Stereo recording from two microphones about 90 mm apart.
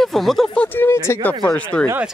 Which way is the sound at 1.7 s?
15° left (ahead or behind).